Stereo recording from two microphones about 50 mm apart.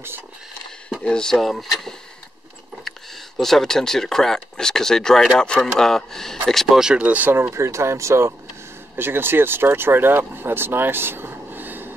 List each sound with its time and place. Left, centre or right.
1.0 s speech: centre
1.3 s speech: centre
3.3 s speech: centre
6.7 s speech: centre
7.0 s speech: right
7.5 s speech: right
8.9 s speech: right